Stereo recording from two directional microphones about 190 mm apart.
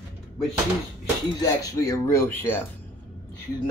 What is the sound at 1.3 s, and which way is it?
Speech, 15° left (ahead or behind).